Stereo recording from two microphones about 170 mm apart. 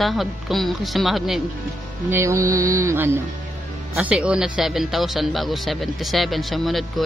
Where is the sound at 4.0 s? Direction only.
5° right (ahead or behind).